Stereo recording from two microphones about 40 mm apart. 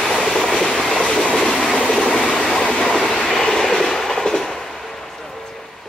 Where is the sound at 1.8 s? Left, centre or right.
Centre.